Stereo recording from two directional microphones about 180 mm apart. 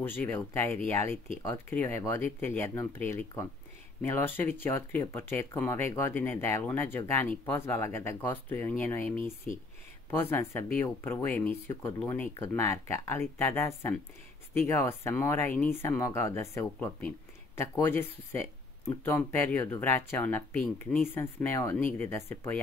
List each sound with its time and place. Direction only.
0.0 s speech: 10° left (ahead or behind)